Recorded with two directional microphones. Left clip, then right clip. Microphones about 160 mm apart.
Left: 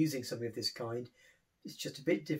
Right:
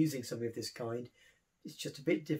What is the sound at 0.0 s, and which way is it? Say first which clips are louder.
Speech: even; 30° right (ahead or behind).